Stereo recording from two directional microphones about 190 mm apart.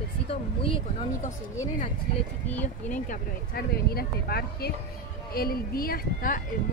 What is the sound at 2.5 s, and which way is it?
Speech, 10° left (ahead or behind).